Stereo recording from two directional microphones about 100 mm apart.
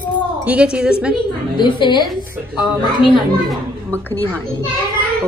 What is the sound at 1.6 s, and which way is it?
Speech, 50° left (ahead or behind).